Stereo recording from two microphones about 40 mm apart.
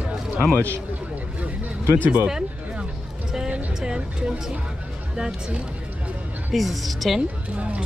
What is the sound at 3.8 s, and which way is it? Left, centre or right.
Speech, right.